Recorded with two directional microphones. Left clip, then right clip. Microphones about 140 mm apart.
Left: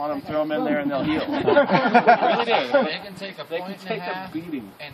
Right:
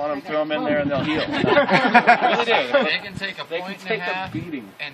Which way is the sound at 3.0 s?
45° left (ahead or behind).